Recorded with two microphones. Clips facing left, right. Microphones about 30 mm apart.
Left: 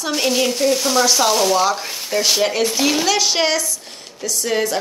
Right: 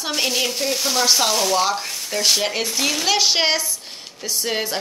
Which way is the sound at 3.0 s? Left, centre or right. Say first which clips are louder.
Left 1 dB; centre.